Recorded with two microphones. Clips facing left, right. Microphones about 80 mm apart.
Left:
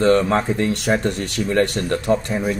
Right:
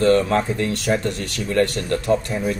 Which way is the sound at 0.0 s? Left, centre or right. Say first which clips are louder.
Left 1 dB; left.